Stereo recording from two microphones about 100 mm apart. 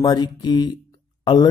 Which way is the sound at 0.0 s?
45° left (ahead or behind).